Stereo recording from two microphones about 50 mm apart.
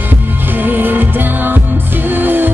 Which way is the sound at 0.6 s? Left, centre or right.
Right.